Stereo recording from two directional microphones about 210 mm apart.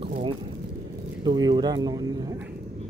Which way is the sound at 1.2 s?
20° right (ahead or behind).